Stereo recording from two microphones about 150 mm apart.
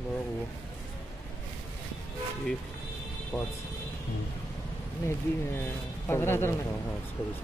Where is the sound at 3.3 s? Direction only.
10° left (ahead or behind).